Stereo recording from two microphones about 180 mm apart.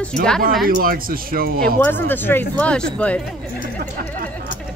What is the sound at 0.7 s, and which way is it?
Speech, 55° right (ahead or behind).